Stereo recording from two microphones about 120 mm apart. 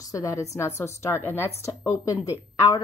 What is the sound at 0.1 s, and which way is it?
A woman's voice, 25° left (ahead or behind).